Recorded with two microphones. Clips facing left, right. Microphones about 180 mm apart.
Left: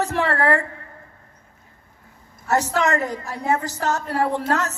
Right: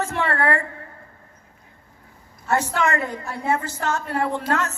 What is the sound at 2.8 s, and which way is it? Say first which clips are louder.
Speech: left 2 dB; 40° left (ahead or behind).